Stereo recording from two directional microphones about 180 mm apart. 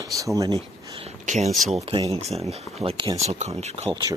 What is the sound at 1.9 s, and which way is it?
Speech, 25° right (ahead or behind).